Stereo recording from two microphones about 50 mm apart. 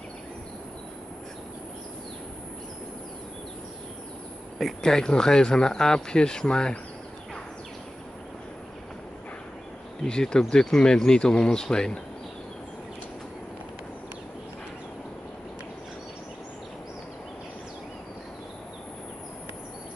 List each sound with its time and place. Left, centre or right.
4.8 s speech: centre
10.0 s speech: centre